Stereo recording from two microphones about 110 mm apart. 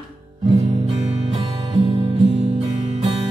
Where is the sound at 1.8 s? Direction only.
60° right (ahead or behind).